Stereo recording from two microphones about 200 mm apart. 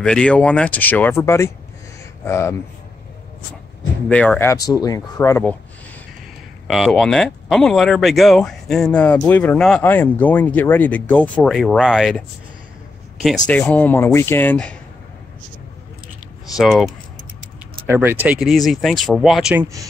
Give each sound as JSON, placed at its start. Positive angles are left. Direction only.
{"t": 0.0, "sound": "speech", "side_deg": 5}
{"t": 4.1, "sound": "speech", "side_deg": 5}
{"t": 6.7, "sound": "speech", "side_deg": 0}
{"t": 13.5, "sound": "speech", "side_deg": 5}
{"t": 16.5, "sound": "speech", "side_deg": 0}
{"t": 17.8, "sound": "speech", "side_deg": -10}